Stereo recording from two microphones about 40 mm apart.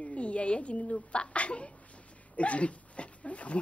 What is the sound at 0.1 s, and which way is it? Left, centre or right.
A woman's voice, left.